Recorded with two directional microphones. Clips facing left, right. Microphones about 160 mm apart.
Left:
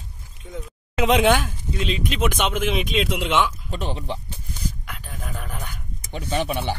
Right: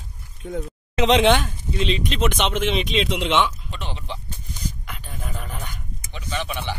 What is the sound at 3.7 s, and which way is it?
Speech, 40° left (ahead or behind).